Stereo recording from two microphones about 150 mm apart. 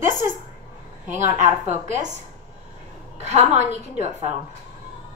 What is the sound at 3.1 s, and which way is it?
Speech, 50° right (ahead or behind).